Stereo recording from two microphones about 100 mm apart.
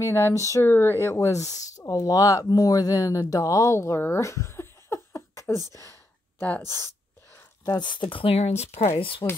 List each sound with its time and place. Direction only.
0.0 s speech: 30° left (ahead or behind)
7.6 s speech: 50° left (ahead or behind); by 8.9 s 90° left
9.2 s speech: 40° left (ahead or behind)